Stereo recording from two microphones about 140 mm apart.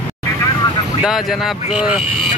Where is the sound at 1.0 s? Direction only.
Centre (ahead or behind).